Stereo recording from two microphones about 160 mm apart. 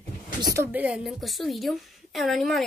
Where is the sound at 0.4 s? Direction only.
20° right (ahead or behind).